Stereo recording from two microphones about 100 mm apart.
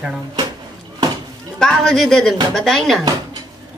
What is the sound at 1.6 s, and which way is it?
Speech, 5° left (ahead or behind).